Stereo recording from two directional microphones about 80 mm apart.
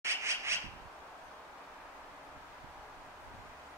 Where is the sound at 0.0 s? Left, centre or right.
Right.